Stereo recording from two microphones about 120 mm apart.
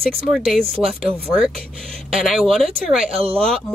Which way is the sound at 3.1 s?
55° right (ahead or behind).